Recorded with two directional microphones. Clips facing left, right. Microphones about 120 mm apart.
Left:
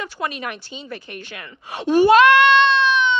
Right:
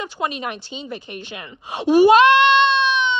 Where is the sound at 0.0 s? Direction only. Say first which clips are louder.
Right 2 dB; 20° right (ahead or behind).